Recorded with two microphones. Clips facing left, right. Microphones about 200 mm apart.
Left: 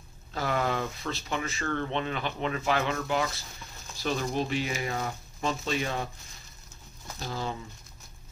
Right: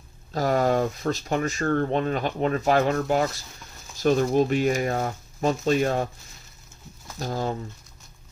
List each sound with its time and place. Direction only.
0.3 s speech: 40° right (ahead or behind)
7.2 s speech: 45° right (ahead or behind)